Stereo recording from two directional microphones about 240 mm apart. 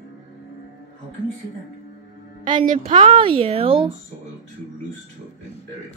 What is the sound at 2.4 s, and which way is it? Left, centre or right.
Speech, right.